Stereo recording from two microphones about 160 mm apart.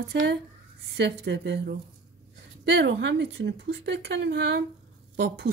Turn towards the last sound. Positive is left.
turn(degrees=-90)